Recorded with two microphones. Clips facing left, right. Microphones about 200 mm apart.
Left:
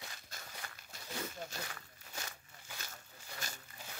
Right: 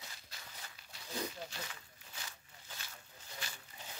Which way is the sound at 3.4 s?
45° left (ahead or behind).